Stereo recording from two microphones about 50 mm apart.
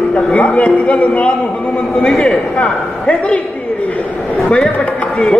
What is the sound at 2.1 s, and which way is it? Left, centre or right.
Speech, centre.